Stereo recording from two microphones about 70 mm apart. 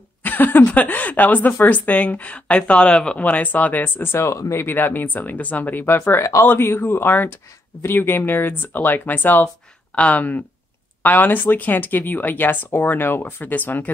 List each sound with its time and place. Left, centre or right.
0.2 s speech: left